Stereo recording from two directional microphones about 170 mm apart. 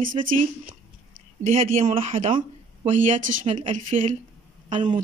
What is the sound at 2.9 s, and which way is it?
Speech, 50° right (ahead or behind).